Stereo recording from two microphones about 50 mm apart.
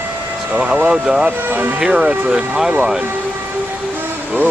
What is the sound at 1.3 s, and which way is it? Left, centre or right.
Speech, right.